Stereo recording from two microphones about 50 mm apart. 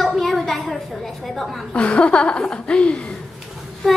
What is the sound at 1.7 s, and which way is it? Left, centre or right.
A woman's voice, left.